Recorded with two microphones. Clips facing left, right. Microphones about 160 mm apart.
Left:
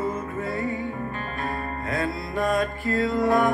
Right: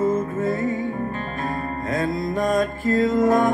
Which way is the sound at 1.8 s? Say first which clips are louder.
Right 5 dB; 40° right (ahead or behind).